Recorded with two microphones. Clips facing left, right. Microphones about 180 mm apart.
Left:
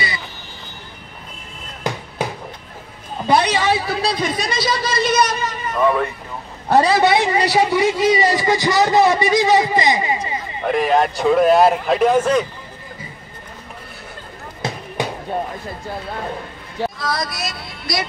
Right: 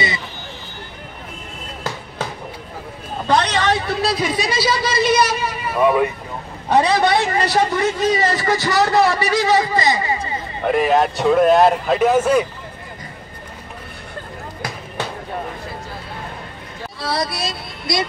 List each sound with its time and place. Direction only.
1.8 s music: 15° left (ahead or behind)
3.3 s a man's voice: 10° left (ahead or behind); by 6.0 s 10° right (ahead or behind)
6.7 s a man's voice: 5° left (ahead or behind)
10.6 s a man's voice: centre (ahead or behind)
15.0 s a sound: 15° left (ahead or behind)
17.0 s speech: 30° right (ahead or behind)